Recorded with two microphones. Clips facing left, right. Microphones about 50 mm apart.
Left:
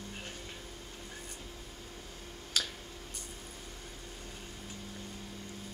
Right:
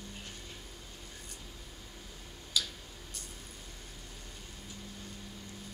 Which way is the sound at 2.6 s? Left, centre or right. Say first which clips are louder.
Even; left.